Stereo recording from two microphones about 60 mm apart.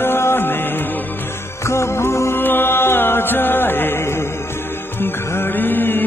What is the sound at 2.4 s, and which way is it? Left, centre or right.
Music, left.